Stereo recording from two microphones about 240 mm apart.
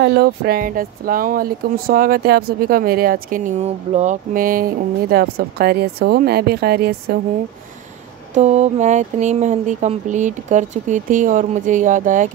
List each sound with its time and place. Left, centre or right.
0.0 s speech: right
8.4 s speech: right